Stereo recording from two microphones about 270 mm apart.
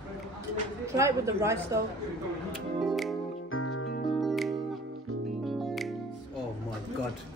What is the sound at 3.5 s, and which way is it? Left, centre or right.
Music, left.